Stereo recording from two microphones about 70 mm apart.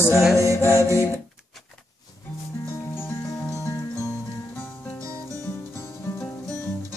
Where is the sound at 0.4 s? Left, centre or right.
Right.